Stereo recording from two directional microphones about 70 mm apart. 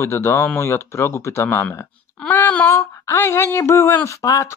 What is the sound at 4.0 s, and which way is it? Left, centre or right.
Speech, left.